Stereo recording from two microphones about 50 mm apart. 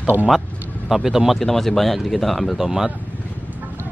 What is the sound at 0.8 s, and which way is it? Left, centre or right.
Speech, centre.